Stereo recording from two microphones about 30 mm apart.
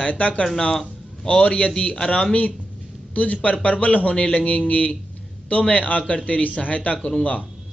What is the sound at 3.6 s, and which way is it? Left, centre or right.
A man's voice, left.